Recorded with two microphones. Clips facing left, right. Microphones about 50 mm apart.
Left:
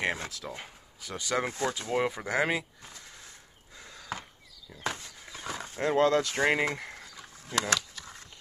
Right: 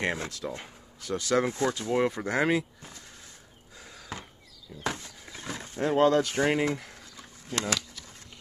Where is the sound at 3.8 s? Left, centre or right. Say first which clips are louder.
Left 2 dB; centre.